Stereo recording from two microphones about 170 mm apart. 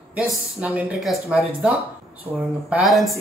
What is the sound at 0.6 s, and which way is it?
Speech, 10° right (ahead or behind).